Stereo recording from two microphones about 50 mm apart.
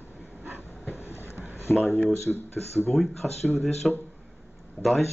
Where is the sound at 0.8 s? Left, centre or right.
Left.